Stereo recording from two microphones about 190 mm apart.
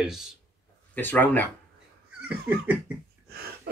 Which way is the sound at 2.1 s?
10° right (ahead or behind).